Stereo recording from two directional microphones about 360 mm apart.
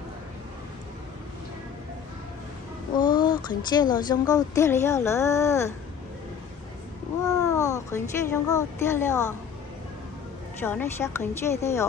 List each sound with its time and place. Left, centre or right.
3.2 s a sound: centre
3.9 s speech: centre
7.2 s speech: centre
10.6 s speech: centre